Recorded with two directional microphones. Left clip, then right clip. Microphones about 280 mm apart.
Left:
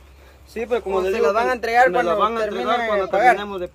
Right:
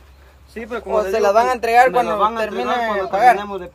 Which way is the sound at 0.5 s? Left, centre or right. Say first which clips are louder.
Right 1 dB; left.